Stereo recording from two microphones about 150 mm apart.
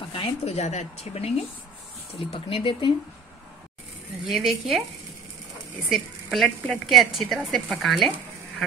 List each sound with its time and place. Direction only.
0.1 s speech: 40° left (ahead or behind)
4.3 s a woman's voice: centre (ahead or behind)
5.9 s a woman's voice: centre (ahead or behind)